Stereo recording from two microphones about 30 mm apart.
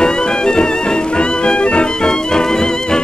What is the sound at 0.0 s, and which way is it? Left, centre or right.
Music, left.